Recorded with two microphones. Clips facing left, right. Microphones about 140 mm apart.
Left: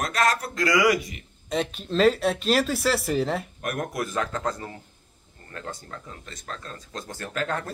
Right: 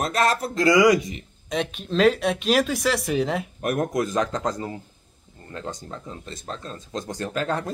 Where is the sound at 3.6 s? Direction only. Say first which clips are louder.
Right 8 dB; 25° right (ahead or behind).